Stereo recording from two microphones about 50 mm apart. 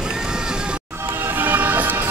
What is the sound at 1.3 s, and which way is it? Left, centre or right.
Music, right.